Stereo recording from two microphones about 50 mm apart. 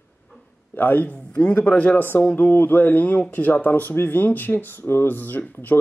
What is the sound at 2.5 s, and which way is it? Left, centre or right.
Speech, left.